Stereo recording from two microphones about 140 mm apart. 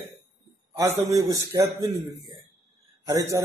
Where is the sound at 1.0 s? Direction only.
25° right (ahead or behind).